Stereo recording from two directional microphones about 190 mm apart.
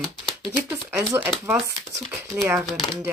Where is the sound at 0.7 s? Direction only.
15° right (ahead or behind).